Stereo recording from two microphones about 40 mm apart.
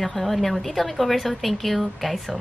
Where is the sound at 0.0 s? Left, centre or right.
Centre.